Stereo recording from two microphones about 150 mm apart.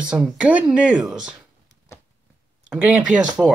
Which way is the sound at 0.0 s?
5° right (ahead or behind).